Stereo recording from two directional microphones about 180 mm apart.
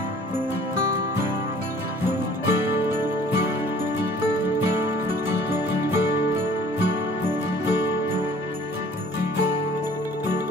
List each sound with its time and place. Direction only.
5.3 s music: 10° right (ahead or behind)